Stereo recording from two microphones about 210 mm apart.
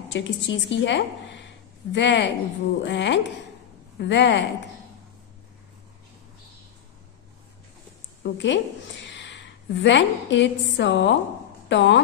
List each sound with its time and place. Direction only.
0.1 s a woman's voice: 60° left (ahead or behind)
8.2 s a woman's voice: 60° left (ahead or behind)
9.0 s a sound: 60° left (ahead or behind)
9.8 s a woman's voice: 60° left (ahead or behind)